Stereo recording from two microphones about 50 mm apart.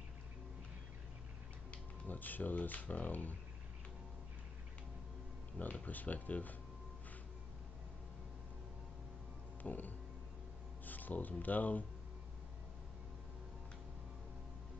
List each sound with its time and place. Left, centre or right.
2.0 s speech: left
5.9 s speech: left
9.6 s music: left
10.9 s speech: left